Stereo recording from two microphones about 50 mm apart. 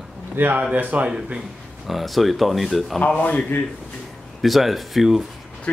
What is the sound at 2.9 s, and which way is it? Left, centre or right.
Speech, left.